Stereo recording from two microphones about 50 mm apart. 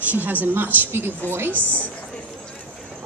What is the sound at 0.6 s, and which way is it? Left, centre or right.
Speech, right.